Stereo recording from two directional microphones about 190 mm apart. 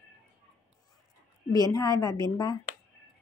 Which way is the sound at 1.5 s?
20° left (ahead or behind).